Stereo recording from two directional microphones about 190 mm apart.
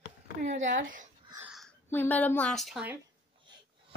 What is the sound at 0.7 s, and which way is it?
Speech, 85° right.